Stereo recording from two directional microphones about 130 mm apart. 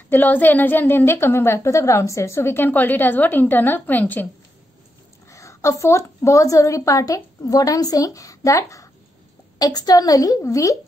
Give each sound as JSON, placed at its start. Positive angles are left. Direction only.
{"t": 0.1, "sound": "a woman's voice", "side_deg": 15}
{"t": 5.3, "sound": "a woman's voice", "side_deg": 25}